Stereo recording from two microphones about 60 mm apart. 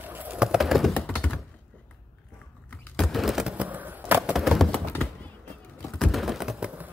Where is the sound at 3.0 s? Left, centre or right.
Centre.